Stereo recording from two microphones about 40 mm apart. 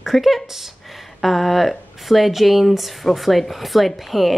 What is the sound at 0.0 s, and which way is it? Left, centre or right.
Speech, centre.